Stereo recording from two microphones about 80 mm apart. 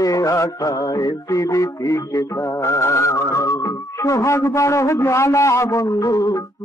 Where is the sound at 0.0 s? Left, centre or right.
Left.